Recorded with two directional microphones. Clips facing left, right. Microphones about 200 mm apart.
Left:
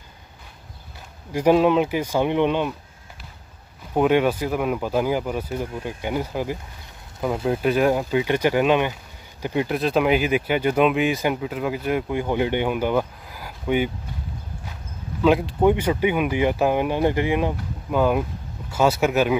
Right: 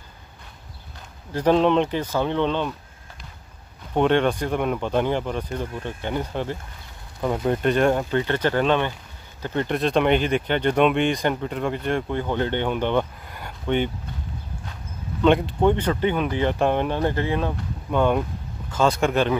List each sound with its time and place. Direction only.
1.3 s speech: 10° left (ahead or behind)
3.9 s speech: 5° left (ahead or behind)
15.2 s speech: 5° left (ahead or behind)